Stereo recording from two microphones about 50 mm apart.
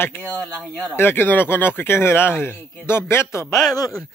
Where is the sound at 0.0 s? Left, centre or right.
Left.